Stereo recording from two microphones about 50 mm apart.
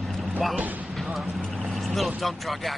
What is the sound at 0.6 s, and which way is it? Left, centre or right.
Speech, right.